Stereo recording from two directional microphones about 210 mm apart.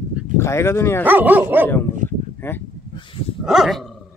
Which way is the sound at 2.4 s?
10° left (ahead or behind).